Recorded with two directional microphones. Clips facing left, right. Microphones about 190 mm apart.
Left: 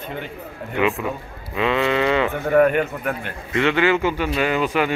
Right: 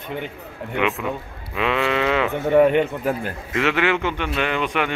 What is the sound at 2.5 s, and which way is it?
Speech, 20° right (ahead or behind).